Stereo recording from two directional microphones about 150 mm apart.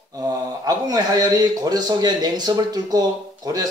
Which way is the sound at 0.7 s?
25° right (ahead or behind).